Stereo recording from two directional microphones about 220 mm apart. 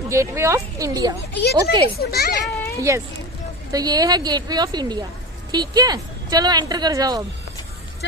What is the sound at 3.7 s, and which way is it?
Speech, 15° right (ahead or behind).